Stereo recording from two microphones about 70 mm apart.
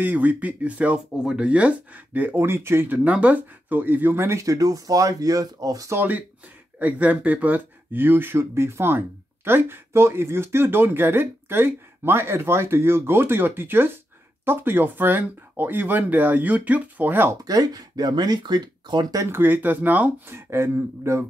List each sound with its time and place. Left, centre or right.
0.0 s speech: right
3.0 s speech: centre; by 5.9 s right
6.8 s speech: right
17.5 s speech: right
19.3 s speech: right
20.3 s speech: right